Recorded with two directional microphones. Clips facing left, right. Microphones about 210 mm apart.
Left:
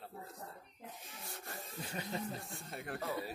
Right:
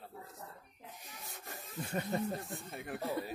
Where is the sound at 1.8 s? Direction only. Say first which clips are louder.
Right 6 dB; 50° right (ahead or behind).